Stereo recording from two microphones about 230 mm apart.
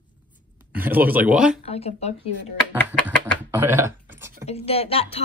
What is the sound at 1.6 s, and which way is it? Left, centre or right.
Speech, left.